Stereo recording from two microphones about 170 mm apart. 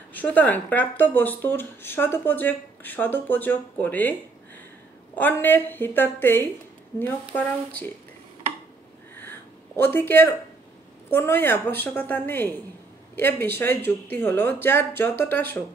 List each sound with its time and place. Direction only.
0.1 s speech: 10° left (ahead or behind)
5.1 s speech: 10° left (ahead or behind)
9.8 s speech: 10° left (ahead or behind)